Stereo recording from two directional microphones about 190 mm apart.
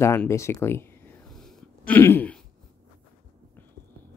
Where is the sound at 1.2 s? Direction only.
Centre (ahead or behind).